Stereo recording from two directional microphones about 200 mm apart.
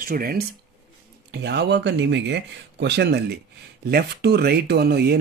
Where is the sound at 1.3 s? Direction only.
60° right (ahead or behind).